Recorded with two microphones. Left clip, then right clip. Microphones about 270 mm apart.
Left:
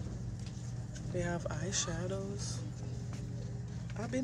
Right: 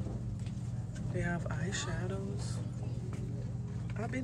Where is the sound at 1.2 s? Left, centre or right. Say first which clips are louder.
Left 1 dB; centre.